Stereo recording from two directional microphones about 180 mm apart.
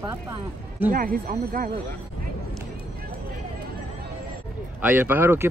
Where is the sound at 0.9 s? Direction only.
50° right (ahead or behind).